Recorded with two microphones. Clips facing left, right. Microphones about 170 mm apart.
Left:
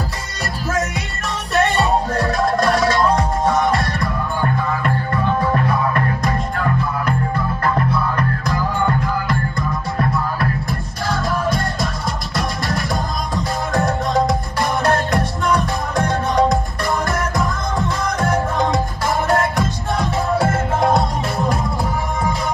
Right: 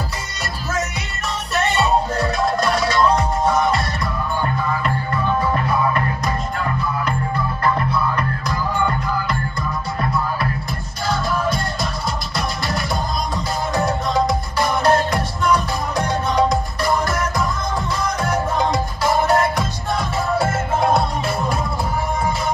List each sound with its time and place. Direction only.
1.5 s music: 50° left (ahead or behind)